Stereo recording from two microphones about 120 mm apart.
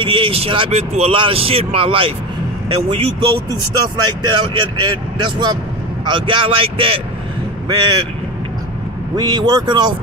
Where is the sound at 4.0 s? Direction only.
40° right (ahead or behind).